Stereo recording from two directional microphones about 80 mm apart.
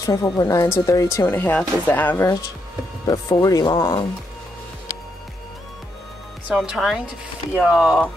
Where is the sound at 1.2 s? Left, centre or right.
Left.